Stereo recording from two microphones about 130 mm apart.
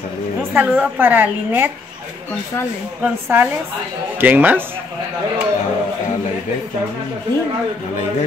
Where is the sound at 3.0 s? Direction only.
15° right (ahead or behind).